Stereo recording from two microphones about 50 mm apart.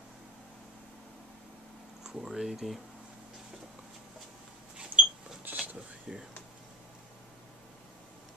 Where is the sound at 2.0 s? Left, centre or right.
Centre.